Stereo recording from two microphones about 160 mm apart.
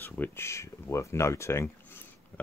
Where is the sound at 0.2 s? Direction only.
15° left (ahead or behind).